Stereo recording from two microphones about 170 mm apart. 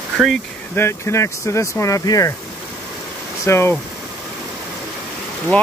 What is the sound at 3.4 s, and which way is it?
Speech, 15° left (ahead or behind).